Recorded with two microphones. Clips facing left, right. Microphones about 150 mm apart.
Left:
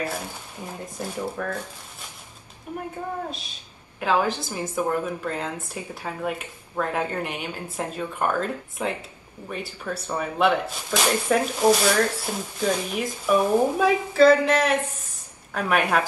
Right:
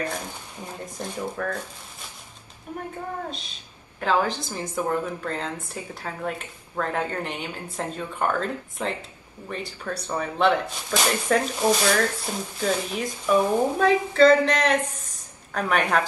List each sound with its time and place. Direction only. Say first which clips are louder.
0.9 s speech: left 1 dB; 5° left (ahead or behind)
4.0 s speech: left 1 dB; 10° left (ahead or behind)